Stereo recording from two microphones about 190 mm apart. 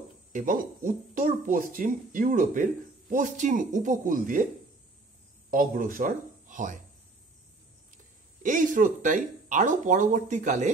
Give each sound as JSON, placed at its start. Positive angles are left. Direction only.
{"t": 0.3, "sound": "speech", "side_deg": -45}
{"t": 5.5, "sound": "speech", "side_deg": -45}
{"t": 8.4, "sound": "speech", "side_deg": -45}